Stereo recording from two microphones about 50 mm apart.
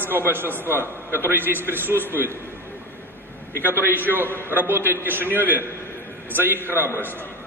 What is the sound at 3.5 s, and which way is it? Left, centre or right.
A man's voice, right.